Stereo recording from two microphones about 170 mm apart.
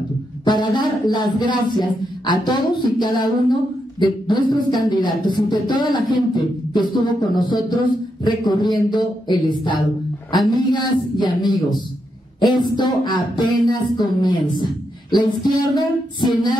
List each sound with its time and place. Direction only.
0.5 s speech: 25° left (ahead or behind)